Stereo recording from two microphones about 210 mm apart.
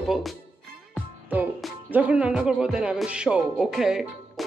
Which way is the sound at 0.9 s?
5° right (ahead or behind).